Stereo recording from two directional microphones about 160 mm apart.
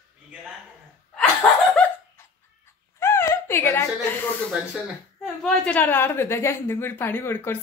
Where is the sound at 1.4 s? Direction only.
5° left (ahead or behind).